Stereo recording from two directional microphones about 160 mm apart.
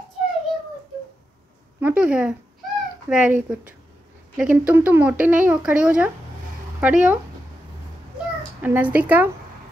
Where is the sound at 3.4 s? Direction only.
10° right (ahead or behind).